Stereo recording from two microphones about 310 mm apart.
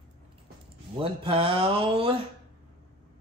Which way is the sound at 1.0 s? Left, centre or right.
Centre.